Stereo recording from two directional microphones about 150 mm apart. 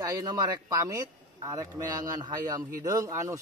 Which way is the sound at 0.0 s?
25° right (ahead or behind).